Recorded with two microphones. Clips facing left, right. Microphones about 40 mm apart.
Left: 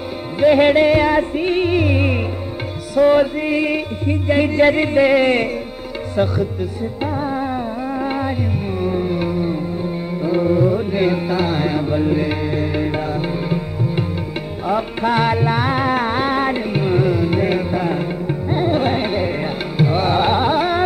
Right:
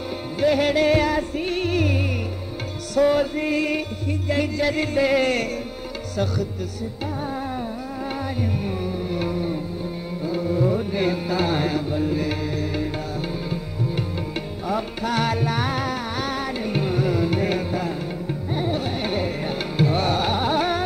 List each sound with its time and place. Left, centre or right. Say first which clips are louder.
0.4 s music: left 7 dB; left
8.0 s music: left 4 dB; left
10.2 s music: left 8 dB; left
10.6 s music: left 5 dB; centre
11.9 s music: left 6 dB; left
14.7 s music: left 7 dB; left
15.9 s music: left 9 dB; left
16.6 s music: left 6 dB; centre
19.0 s music: left 5 dB; centre